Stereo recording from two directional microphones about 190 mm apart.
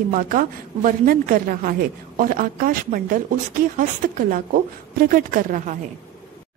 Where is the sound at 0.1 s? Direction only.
45° right (ahead or behind).